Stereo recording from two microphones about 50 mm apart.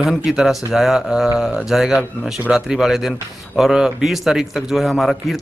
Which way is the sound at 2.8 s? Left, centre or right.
Centre.